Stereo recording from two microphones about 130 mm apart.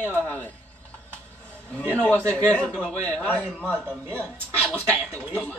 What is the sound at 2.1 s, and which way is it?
Speech, 10° left (ahead or behind).